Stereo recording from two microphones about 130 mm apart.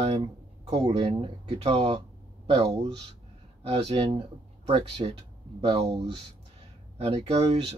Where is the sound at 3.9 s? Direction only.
40° right (ahead or behind).